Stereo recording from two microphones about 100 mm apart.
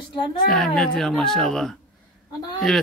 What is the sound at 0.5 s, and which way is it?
Speech, 5° left (ahead or behind).